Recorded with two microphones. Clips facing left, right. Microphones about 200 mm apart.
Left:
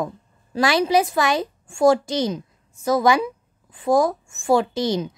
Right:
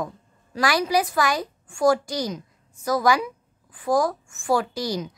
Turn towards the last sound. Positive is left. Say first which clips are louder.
# left 5 dB
turn(degrees=25)  # may be behind; listen again after turning